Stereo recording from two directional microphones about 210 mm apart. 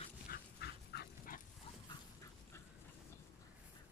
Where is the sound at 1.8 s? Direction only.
15° left (ahead or behind).